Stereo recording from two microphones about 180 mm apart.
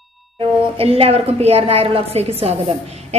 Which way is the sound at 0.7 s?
35° right (ahead or behind).